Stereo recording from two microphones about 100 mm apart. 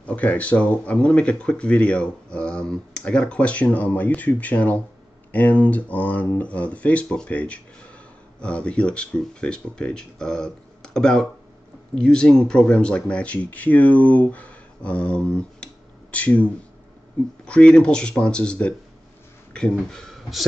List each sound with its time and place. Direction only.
0.0 s speech: 15° left (ahead or behind)